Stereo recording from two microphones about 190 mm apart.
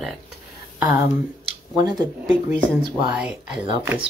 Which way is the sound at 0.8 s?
10° right (ahead or behind).